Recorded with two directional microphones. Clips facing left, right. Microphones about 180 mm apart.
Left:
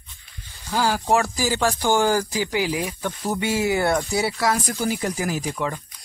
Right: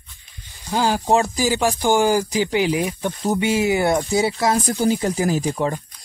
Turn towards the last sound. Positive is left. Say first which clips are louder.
# right 5 dB
turn(degrees=-30)  # may be behind; listen again after turning